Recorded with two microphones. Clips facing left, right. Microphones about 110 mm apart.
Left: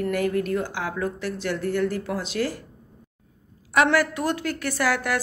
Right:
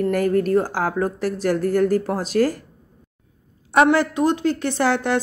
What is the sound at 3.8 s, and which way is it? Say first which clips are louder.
Speech: right 5 dB; 20° right (ahead or behind).